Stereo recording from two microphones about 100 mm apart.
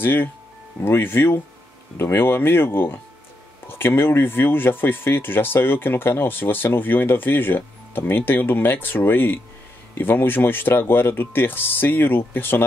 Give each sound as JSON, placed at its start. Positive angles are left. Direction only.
{"t": 0.0, "sound": "speech", "side_deg": 20}